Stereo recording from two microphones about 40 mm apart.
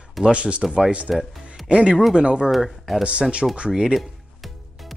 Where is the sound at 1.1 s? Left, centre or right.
Centre.